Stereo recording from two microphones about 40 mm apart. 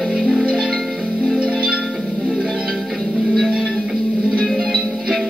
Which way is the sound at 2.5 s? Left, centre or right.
Centre.